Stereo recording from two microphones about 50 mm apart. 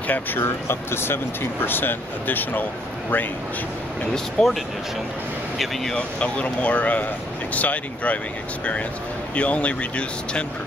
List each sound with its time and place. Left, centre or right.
0.0 s speech: left
0.4 s speech: left
4.1 s speech: centre
5.9 s speech: left
9.3 s speech: left